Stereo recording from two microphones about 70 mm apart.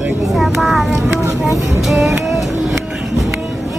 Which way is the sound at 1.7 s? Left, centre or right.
Centre.